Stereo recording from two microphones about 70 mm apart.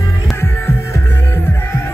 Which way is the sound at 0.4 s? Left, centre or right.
Left.